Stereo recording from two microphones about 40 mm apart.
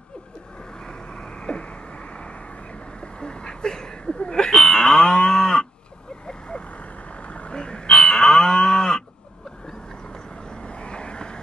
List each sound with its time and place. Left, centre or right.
0.7 s vehicle: left
6.7 s moo: left; by 9.0 s centre
10.1 s vehicle: left